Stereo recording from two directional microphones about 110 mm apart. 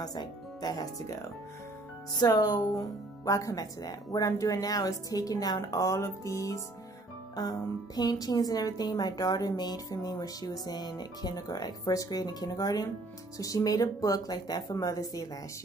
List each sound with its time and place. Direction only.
0.0 s speech: 35° left (ahead or behind)